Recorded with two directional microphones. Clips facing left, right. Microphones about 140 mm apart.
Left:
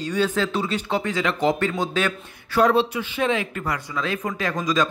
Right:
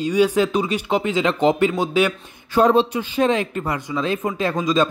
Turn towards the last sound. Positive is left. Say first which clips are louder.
# right 4 dB
turn(degrees=-25)  # may be behind; listen again after turning